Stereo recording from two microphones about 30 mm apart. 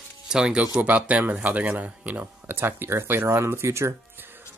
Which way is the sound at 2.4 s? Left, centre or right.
Right.